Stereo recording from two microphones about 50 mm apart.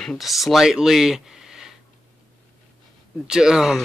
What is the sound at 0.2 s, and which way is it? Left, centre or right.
Speech, centre.